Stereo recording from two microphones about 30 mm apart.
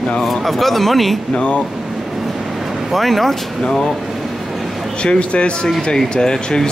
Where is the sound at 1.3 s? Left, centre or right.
Left.